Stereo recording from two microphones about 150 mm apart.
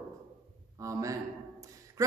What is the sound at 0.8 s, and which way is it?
Speech, 20° right (ahead or behind).